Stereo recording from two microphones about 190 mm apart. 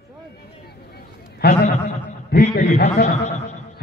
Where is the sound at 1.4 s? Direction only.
60° left (ahead or behind).